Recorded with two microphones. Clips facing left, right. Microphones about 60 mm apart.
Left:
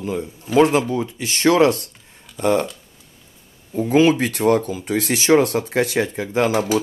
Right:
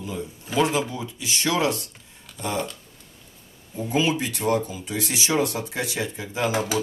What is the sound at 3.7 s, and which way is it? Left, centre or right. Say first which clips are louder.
Speech: left 8 dB; left.